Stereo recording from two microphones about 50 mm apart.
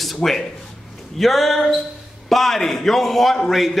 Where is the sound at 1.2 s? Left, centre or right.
Centre.